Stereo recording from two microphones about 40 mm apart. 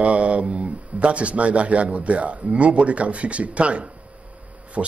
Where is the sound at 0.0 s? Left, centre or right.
Right.